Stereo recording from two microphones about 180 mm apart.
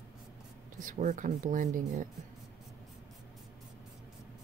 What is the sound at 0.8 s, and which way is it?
Speech, 45° right (ahead or behind).